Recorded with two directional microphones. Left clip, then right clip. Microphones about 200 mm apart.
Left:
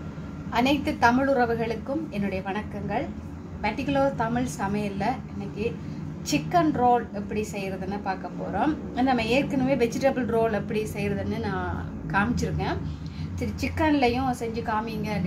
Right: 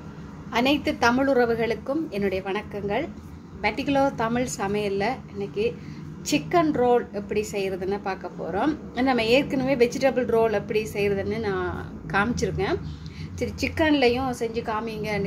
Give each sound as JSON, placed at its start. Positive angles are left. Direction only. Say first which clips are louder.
{"t": 0.5, "sound": "a woman's voice", "louder": "right 1 dB", "side_deg": -30}